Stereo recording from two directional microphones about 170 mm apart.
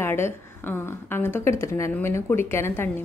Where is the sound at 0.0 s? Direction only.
15° left (ahead or behind).